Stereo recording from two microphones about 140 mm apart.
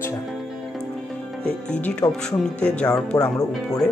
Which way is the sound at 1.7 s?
10° left (ahead or behind).